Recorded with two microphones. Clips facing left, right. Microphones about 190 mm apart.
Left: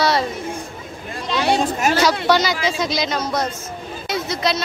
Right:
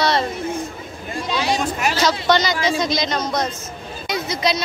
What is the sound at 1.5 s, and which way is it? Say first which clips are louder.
Speech: left 3 dB; 40° left (ahead or behind).